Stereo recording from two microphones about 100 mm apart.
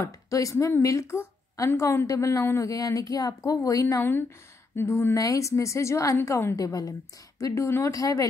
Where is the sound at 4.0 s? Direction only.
20° left (ahead or behind).